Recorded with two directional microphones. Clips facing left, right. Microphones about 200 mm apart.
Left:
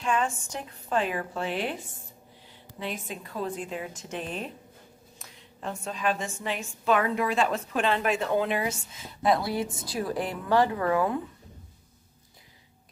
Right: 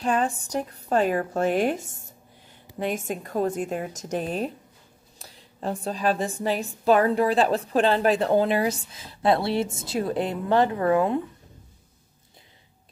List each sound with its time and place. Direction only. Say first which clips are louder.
0.0 s a woman's voice: right 3 dB; 35° right (ahead or behind)